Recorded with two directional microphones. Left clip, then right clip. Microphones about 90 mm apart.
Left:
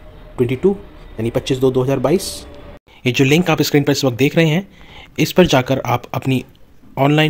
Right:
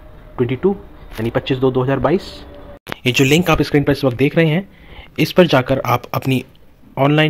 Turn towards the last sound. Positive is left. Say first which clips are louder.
# even
turn(degrees=15)  # may be behind; listen again after turning